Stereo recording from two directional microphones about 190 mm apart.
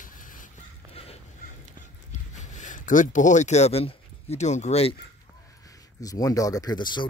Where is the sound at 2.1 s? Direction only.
40° left (ahead or behind).